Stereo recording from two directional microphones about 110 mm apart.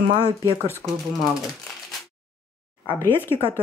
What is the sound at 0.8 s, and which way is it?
Speech, 35° right (ahead or behind).